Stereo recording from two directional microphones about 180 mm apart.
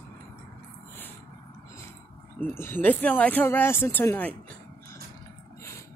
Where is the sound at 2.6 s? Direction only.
10° left (ahead or behind).